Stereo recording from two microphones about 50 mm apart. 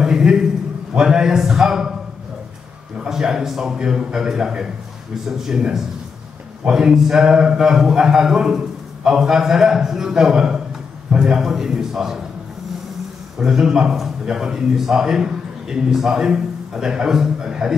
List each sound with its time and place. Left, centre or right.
0.0 s a sound: centre
0.9 s a man's voice: centre
3.0 s a man's voice: centre
13.4 s a man's voice: centre